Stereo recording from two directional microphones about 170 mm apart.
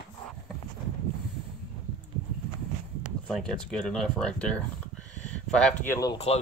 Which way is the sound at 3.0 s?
5° left (ahead or behind).